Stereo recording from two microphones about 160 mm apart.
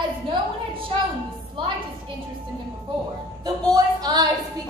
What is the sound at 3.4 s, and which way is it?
Speech, 25° right (ahead or behind).